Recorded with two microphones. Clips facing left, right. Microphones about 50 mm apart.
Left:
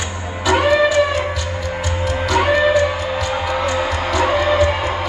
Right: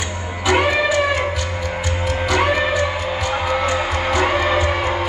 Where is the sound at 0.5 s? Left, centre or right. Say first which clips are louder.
Left 3 dB; right.